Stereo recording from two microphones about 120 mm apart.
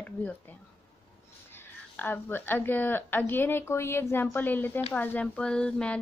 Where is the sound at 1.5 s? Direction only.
15° left (ahead or behind).